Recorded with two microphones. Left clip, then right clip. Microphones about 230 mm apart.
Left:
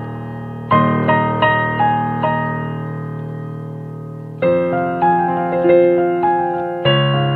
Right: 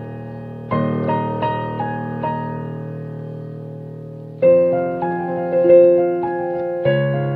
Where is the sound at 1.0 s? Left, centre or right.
Left.